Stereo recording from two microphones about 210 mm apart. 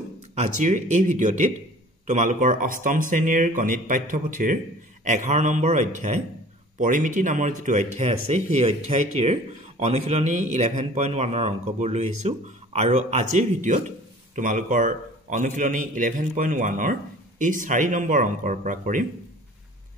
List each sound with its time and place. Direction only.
0.4 s speech: 35° right (ahead or behind)